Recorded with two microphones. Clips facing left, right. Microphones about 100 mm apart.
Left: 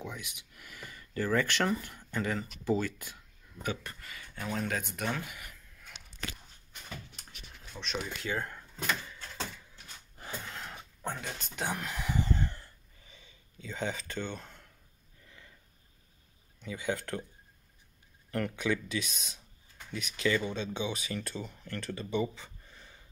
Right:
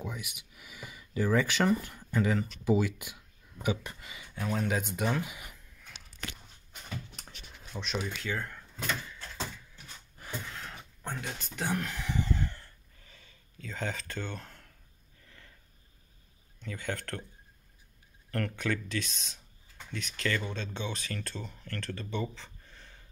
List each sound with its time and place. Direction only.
0.0 s speech: 5° right (ahead or behind)
4.4 s speech: centre (ahead or behind)
4.6 s speech: 15° right (ahead or behind)
7.7 s speech: 5° right (ahead or behind)
8.2 s speech: 20° left (ahead or behind)
10.2 s a sound: 25° left (ahead or behind)
11.1 s speech: centre (ahead or behind)
11.7 s speech: 10° left (ahead or behind)
12.5 s a sound: 10° left (ahead or behind)
16.6 s speech: 5° left (ahead or behind)
18.3 s speech: 10° left (ahead or behind)